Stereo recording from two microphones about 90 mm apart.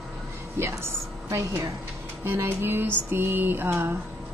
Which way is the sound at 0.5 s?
30° right (ahead or behind).